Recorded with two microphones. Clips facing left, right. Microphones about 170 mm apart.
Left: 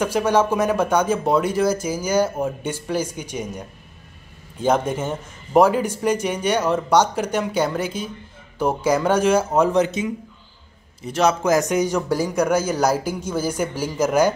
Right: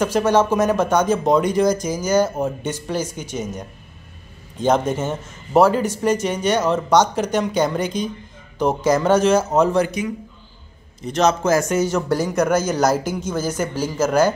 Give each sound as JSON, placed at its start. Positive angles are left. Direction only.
{"t": 0.0, "sound": "a man's voice", "side_deg": 10}
{"t": 9.8, "sound": "a man's voice", "side_deg": 25}
{"t": 11.0, "sound": "a man's voice", "side_deg": 10}